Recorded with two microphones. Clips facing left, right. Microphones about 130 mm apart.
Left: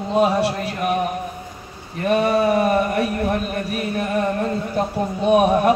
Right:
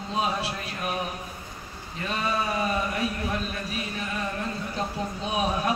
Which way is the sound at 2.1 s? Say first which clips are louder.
Left 11 dB; 65° left (ahead or behind).